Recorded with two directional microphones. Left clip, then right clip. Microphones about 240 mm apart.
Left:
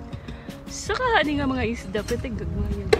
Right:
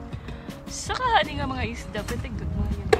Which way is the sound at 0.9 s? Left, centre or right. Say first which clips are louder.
Left 1 dB; centre.